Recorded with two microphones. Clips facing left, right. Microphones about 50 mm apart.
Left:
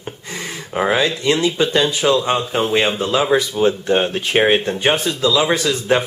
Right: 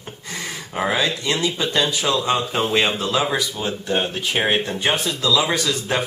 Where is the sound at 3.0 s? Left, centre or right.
Centre.